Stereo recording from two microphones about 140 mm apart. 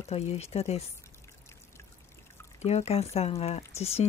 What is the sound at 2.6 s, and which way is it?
Speech, 45° left (ahead or behind).